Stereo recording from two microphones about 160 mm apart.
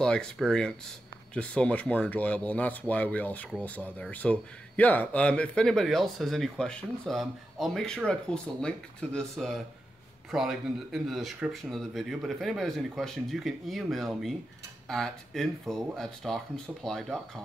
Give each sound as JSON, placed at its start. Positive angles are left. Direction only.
{"t": 0.0, "sound": "speech", "side_deg": 5}